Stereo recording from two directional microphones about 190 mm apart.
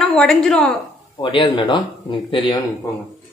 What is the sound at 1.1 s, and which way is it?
Speech, 25° left (ahead or behind).